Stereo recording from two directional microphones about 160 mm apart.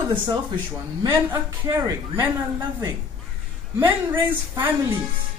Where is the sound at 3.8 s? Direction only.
15° right (ahead or behind).